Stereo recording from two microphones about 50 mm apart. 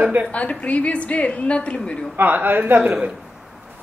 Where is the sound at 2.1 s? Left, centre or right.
Right.